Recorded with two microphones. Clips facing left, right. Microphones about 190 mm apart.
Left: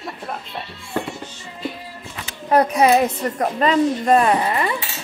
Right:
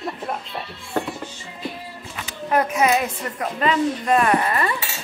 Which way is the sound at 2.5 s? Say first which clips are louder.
Left 4 dB; 35° left (ahead or behind).